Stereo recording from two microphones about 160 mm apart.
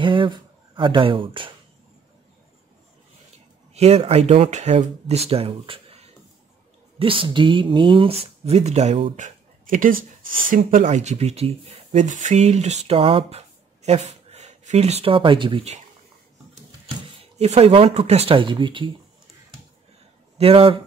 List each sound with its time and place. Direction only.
0.0 s a sound: 30° right (ahead or behind)
3.7 s speech: 40° right (ahead or behind)
7.0 s speech: 35° right (ahead or behind)
16.8 s speech: 40° right (ahead or behind)
20.3 s speech: 35° right (ahead or behind)